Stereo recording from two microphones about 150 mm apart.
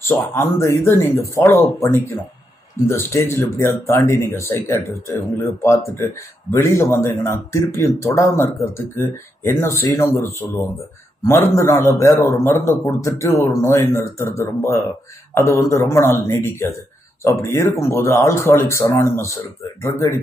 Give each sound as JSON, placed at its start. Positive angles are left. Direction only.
{"t": 0.0, "sound": "speech", "side_deg": 15}